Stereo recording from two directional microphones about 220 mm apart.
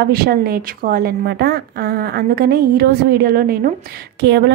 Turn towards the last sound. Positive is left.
turn(degrees=-50)  # may be behind; listen again after turning